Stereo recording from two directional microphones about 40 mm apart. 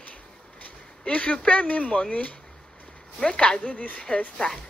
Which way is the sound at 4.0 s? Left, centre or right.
Left.